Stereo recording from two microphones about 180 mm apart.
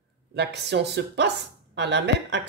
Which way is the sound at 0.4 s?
70° right (ahead or behind).